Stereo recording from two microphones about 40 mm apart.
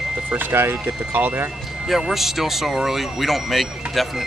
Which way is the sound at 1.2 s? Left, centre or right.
Right.